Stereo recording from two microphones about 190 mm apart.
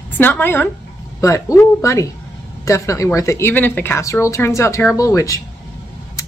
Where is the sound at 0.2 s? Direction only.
10° left (ahead or behind).